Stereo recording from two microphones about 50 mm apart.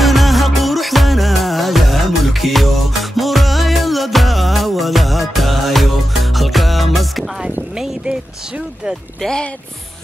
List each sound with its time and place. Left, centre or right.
0.0 s music: centre
7.7 s boat: centre